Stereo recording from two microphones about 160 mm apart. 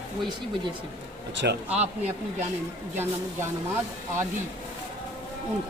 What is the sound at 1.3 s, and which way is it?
Speech, 90° right.